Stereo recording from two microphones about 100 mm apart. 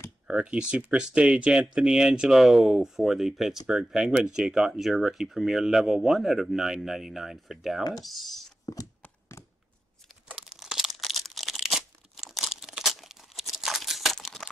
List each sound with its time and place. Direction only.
0.3 s speech: 10° right (ahead or behind)
9.3 s a sound: 30° left (ahead or behind)
10.2 s crumpling: 5° right (ahead or behind)